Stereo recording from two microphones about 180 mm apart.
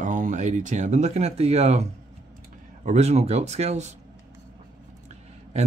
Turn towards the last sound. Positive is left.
turn(degrees=-35)  # may be behind; listen again after turning